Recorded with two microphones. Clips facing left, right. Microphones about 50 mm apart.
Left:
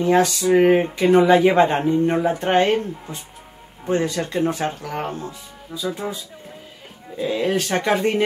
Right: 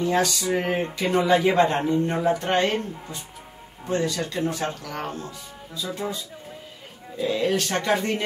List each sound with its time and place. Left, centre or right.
0.0 s speech: left
7.2 s speech: left